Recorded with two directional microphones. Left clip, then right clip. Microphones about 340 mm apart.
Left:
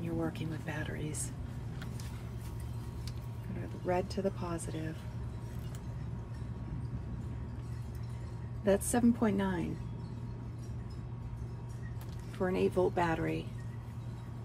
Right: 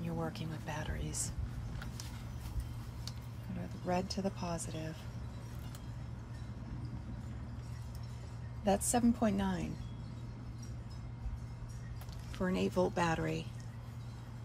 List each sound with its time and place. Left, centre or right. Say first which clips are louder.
0.2 s speech: left 3 dB; centre
3.8 s a woman's voice: left 3 dB; centre
8.6 s a woman's voice: left 2 dB; centre
12.4 s speech: left 3 dB; centre